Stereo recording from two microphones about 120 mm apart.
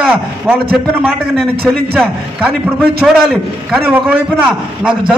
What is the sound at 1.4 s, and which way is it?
Speech, 5° left (ahead or behind).